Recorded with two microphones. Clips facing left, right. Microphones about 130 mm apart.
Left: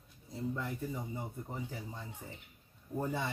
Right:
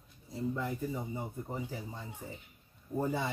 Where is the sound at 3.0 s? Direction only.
10° right (ahead or behind).